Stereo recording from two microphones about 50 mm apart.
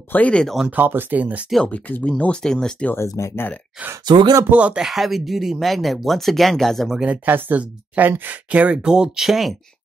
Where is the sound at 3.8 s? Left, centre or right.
Centre.